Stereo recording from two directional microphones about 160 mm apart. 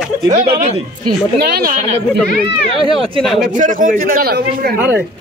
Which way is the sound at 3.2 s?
Centre (ahead or behind).